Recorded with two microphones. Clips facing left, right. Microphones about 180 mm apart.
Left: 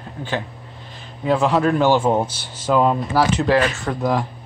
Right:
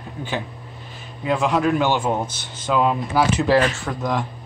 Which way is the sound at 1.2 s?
Centre (ahead or behind).